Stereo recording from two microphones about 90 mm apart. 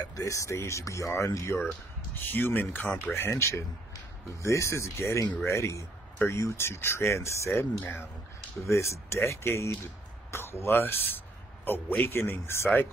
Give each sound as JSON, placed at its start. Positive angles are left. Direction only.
{"t": 0.0, "sound": "speech", "side_deg": 40}
{"t": 8.6, "sound": "speech", "side_deg": 35}